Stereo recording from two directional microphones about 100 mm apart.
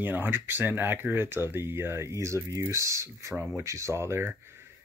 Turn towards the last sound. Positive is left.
turn(degrees=-25)  # may be behind; listen again after turning